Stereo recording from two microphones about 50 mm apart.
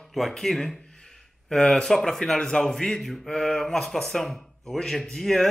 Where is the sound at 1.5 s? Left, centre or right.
Centre.